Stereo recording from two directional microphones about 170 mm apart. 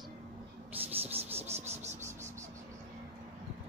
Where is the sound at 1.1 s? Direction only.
35° right (ahead or behind).